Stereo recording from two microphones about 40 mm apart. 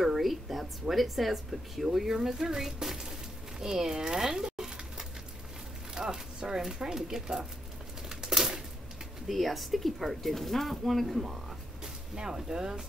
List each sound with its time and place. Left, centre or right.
0.0 s speech: centre
8.1 s crumpling: centre
9.3 s speech: centre
11.8 s speech: centre